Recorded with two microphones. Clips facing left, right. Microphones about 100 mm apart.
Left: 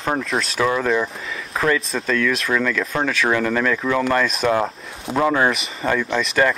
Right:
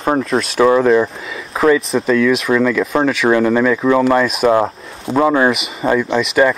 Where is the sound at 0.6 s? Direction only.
30° right (ahead or behind).